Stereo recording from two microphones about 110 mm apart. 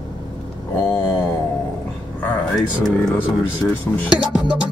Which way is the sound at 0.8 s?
20° left (ahead or behind).